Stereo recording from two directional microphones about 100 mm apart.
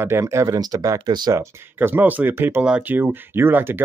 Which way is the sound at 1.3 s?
20° right (ahead or behind).